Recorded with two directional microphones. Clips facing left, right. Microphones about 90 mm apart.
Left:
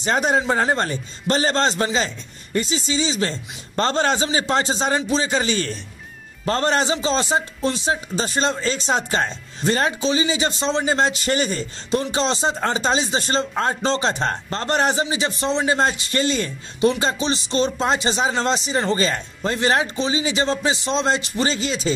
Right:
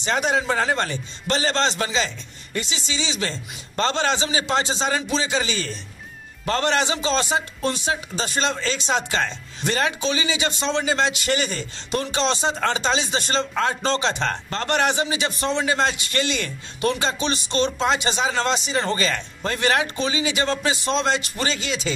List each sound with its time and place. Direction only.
0.0 s a man's voice: 40° left (ahead or behind)
6.4 s a man's voice: 35° left (ahead or behind)